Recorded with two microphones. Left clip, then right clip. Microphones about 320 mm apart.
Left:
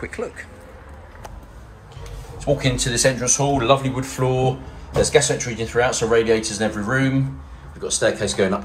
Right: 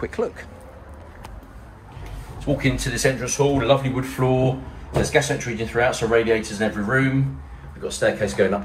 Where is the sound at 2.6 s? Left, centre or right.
Centre.